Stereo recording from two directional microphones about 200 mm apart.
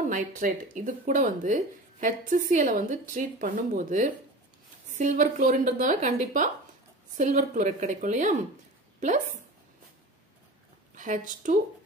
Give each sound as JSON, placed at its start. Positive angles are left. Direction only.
{"t": 0.0, "sound": "speech", "side_deg": -40}
{"t": 11.0, "sound": "speech", "side_deg": -40}